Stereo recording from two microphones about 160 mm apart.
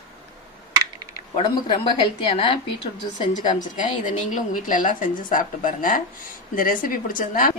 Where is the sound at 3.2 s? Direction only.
50° left (ahead or behind).